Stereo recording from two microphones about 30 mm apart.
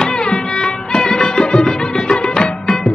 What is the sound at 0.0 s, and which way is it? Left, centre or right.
Music, left.